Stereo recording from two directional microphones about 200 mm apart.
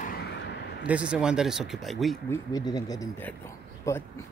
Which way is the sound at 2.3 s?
20° left (ahead or behind).